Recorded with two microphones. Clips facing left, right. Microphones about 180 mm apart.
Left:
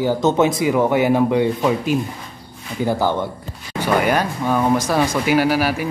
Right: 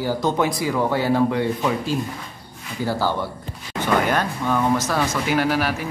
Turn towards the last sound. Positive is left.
turn(degrees=5)  # may be behind; listen again after turning